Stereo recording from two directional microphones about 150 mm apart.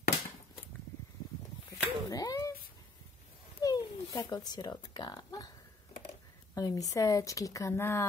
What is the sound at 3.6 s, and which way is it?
Speech, 25° left (ahead or behind).